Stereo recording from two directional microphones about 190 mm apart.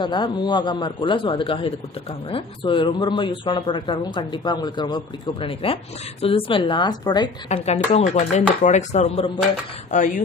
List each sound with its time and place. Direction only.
0.0 s speech: 25° left (ahead or behind)
7.4 s speech: 35° left (ahead or behind)